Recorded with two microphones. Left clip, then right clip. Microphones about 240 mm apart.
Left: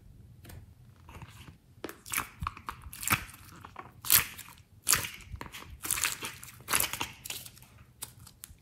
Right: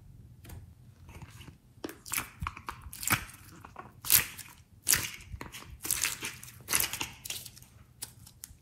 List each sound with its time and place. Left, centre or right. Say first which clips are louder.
1.9 s chewing: left 2 dB; centre
3.0 s biting: left 1 dB; centre
3.6 s crunch: left 1 dB; centre
4.8 s a sound: left 1 dB; centre
7.3 s typewriter: right 1 dB; centre
8.0 s typing: even; centre